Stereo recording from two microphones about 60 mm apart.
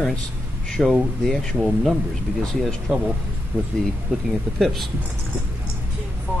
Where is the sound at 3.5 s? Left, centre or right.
Right.